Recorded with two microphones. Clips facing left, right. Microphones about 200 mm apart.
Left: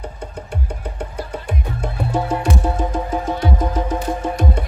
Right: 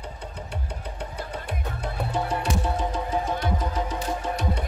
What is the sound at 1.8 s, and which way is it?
Music, 50° left (ahead or behind).